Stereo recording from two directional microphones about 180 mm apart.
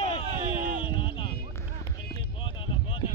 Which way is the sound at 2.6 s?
25° left (ahead or behind).